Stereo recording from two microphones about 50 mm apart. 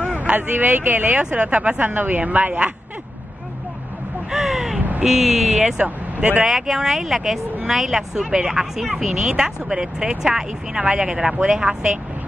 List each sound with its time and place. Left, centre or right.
0.4 s speech: right
4.3 s crow: centre
4.7 s a sound: right
5.0 s speech: centre
5.6 s speech: centre
5.9 s speech: right
6.4 s a woman's voice: centre